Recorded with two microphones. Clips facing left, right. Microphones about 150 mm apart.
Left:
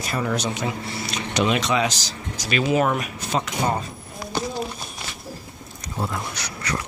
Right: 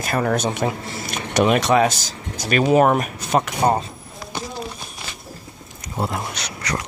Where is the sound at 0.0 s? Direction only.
55° right (ahead or behind).